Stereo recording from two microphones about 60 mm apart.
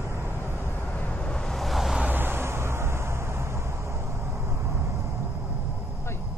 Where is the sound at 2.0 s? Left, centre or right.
Right.